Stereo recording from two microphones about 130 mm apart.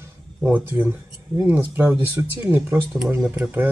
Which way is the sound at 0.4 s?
10° right (ahead or behind).